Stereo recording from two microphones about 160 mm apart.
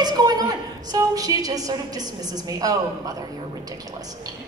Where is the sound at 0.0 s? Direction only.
25° right (ahead or behind).